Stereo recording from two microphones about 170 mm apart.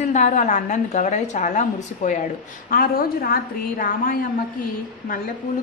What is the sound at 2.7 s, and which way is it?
A woman's voice, 60° left (ahead or behind).